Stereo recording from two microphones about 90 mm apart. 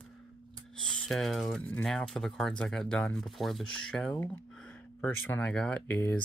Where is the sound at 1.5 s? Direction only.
15° left (ahead or behind).